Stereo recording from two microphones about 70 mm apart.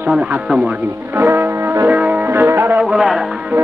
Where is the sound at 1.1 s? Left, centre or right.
Right.